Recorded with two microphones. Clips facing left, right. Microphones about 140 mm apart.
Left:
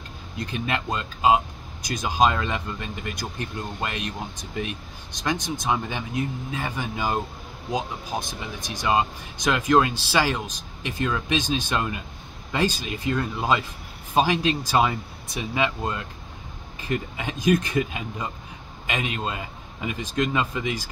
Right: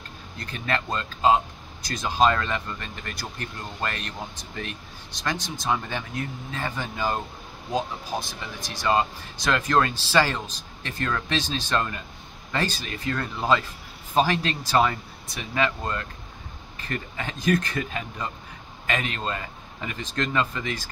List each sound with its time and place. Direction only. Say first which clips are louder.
0.4 s speech: left 1 dB; 15° left (ahead or behind)
8.5 s speech: even; 20° left (ahead or behind)